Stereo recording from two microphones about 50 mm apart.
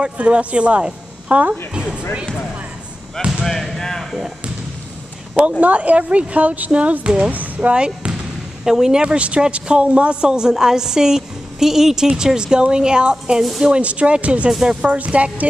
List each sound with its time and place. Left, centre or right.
0.0 s speech: right
3.2 s speech: centre
3.4 s speech: centre
5.6 s a woman's voice: right
14.5 s a man's voice: centre
14.8 s a woman's voice: right